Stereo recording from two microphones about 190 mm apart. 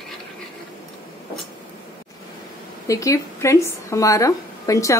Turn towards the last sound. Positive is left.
turn(degrees=15)  # may be behind; listen again after turning